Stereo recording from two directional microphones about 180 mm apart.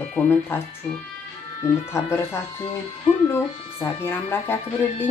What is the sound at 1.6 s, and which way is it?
Speech, 15° left (ahead or behind).